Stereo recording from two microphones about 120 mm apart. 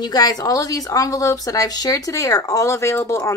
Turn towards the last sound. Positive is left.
turn(degrees=25)  # may be behind; listen again after turning